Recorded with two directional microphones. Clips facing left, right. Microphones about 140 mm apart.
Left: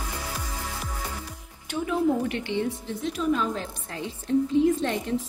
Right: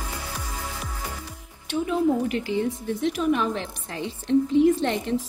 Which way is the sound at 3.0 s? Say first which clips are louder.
Right 2 dB; 85° right.